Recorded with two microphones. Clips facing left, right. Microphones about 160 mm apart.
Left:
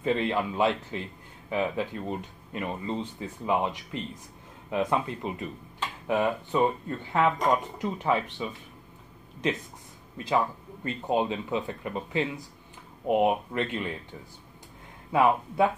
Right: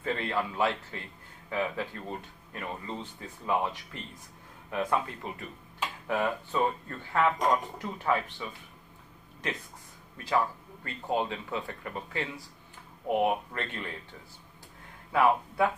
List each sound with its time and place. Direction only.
0.0 s speech: 20° left (ahead or behind)
10.1 s speech: 20° left (ahead or behind)
15.1 s speech: 20° left (ahead or behind)